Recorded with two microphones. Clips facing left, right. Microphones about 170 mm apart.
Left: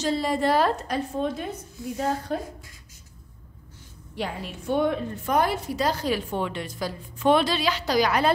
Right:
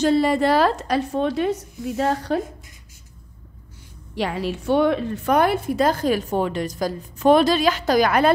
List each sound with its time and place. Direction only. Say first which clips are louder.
0.0 s a woman's voice: right 6 dB; 60° right (ahead or behind); by 2.4 s 90° right
4.1 s a woman's voice: right 7 dB; 90° right; by 8.3 s 50° right (ahead or behind)